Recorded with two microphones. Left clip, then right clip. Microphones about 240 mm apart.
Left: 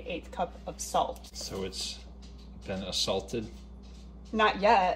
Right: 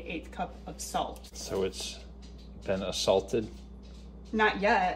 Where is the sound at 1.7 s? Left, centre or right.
Right.